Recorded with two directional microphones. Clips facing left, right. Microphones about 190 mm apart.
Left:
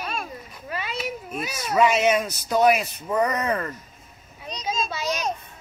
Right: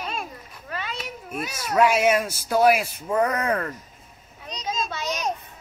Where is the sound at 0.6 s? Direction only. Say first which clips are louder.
Left 3 dB; 10° left (ahead or behind).